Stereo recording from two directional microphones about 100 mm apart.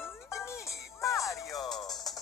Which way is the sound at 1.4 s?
Centre (ahead or behind).